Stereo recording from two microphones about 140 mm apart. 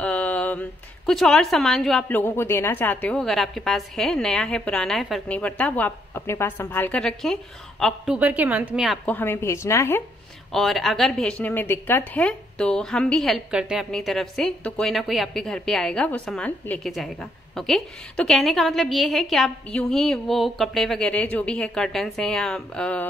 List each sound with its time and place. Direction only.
0.0 s a woman's voice: 10° left (ahead or behind)
9.0 s speech: 15° left (ahead or behind)
10.5 s a woman's voice: centre (ahead or behind)